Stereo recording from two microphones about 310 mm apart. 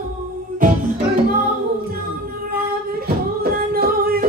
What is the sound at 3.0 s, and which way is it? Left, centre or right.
Music, right.